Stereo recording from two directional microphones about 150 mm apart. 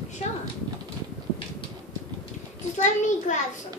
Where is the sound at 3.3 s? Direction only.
55° left (ahead or behind).